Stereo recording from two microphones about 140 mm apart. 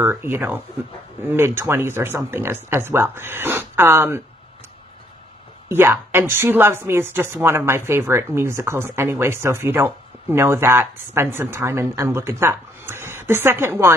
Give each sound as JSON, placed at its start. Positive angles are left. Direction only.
{"t": 0.0, "sound": "a woman's voice", "side_deg": -15}
{"t": 5.7, "sound": "a woman's voice", "side_deg": -15}